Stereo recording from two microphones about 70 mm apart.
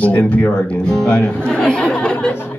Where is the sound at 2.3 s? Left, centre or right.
Left.